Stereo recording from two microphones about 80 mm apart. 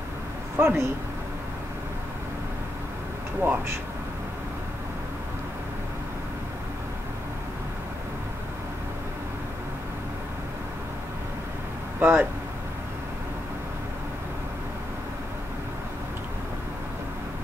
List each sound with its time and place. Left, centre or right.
0.6 s speech: right
3.4 s speech: right
12.0 s speech: right